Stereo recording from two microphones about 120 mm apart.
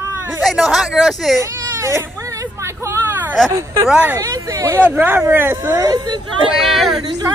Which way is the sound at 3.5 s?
30° right (ahead or behind).